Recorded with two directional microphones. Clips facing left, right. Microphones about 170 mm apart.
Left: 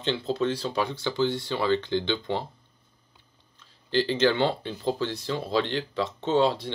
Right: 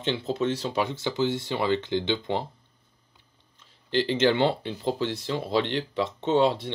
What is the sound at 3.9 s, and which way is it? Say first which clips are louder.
Speech: even; 25° right (ahead or behind).